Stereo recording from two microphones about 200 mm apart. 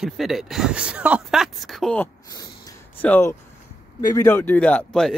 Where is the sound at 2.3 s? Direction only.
20° left (ahead or behind).